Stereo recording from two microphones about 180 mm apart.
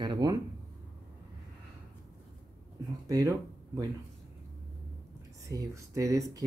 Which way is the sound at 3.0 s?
20° right (ahead or behind).